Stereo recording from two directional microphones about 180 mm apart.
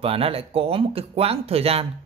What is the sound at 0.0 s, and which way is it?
A man's voice, 30° right (ahead or behind).